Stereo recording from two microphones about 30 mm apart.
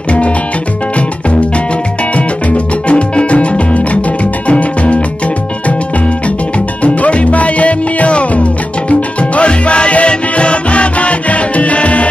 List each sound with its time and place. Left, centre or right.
2.1 s music: left
6.8 s music: left
8.8 s salsa music: left